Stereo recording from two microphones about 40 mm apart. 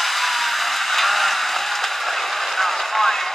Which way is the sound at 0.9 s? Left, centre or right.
Centre.